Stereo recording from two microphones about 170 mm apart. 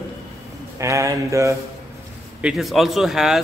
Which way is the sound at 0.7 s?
20° right (ahead or behind).